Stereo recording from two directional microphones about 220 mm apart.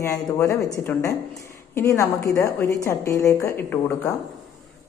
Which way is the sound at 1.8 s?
10° left (ahead or behind).